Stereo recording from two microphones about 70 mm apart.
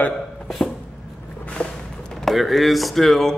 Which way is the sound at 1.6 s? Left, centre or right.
Centre.